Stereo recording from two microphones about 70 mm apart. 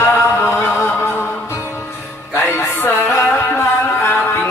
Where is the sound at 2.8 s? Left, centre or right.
Left.